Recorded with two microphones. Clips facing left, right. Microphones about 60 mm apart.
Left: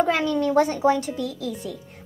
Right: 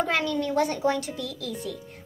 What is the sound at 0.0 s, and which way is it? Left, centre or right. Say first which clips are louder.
Speech: left 4 dB; left.